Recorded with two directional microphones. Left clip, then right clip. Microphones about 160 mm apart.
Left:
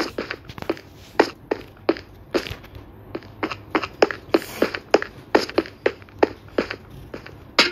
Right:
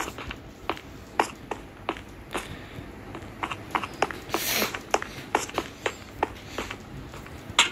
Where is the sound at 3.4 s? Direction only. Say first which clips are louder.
Left 5 dB; centre (ahead or behind).